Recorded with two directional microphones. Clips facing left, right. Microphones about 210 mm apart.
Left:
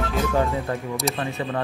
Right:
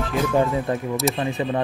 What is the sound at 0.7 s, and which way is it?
Speech, 20° right (ahead or behind).